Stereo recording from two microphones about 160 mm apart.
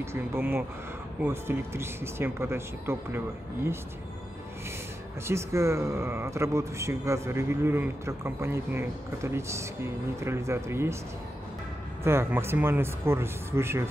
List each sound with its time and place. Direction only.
0.0 s speech: 15° right (ahead or behind)
5.2 s speech: 15° right (ahead or behind)
12.0 s speech: 15° right (ahead or behind)